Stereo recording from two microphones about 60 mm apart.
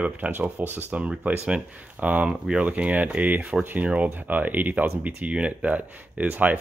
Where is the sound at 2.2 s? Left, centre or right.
Centre.